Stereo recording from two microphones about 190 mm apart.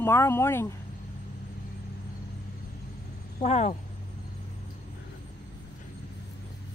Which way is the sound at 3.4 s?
35° left (ahead or behind).